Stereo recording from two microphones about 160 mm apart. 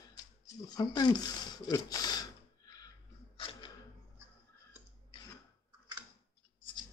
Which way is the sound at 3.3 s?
35° left (ahead or behind).